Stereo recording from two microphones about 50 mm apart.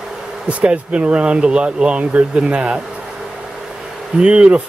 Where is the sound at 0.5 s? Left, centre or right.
Right.